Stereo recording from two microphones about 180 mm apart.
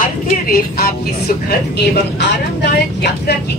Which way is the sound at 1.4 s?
65° left (ahead or behind).